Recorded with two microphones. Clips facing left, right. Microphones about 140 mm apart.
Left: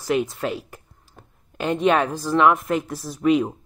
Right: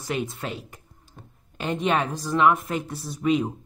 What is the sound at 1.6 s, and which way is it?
Speech, 50° left (ahead or behind).